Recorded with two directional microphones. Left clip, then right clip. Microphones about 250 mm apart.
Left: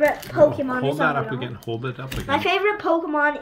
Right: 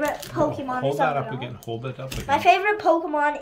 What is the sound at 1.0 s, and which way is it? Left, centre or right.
Speech, centre.